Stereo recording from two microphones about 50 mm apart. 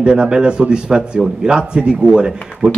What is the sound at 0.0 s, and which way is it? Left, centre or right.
A man's voice, centre.